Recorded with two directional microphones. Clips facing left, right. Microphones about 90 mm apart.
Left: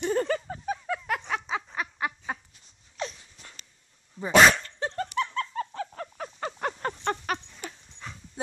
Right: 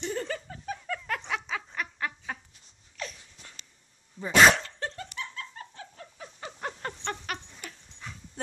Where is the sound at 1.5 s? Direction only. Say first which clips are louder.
Left 3 dB; 20° left (ahead or behind).